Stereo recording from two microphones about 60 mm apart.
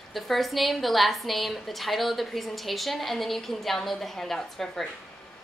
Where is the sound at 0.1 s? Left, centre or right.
Centre.